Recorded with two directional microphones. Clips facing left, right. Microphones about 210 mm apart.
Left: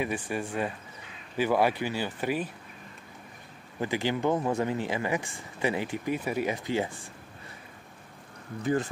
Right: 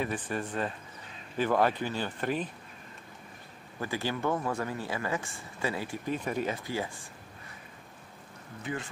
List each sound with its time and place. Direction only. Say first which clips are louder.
0.0 s speech: left 2 dB; 10° left (ahead or behind)
3.8 s speech: left 4 dB; 20° left (ahead or behind)